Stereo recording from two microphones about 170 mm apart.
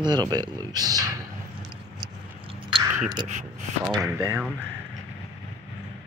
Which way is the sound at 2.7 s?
30° right (ahead or behind).